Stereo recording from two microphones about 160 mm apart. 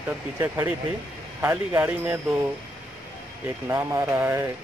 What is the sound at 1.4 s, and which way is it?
Speech, 10° right (ahead or behind).